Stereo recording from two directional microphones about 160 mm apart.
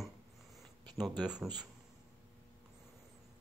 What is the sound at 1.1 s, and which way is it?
Speech, 25° right (ahead or behind).